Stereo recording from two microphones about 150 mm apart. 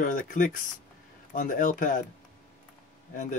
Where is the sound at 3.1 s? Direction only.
60° left (ahead or behind).